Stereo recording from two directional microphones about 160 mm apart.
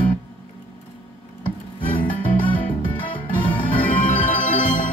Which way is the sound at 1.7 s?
30° left (ahead or behind).